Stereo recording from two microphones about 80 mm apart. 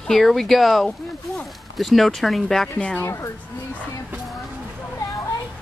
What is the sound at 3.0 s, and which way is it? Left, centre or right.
Speech, left.